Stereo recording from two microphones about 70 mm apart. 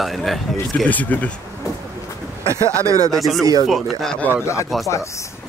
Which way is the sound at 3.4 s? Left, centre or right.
Right.